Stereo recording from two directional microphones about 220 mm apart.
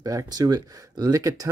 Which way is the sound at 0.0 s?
15° right (ahead or behind).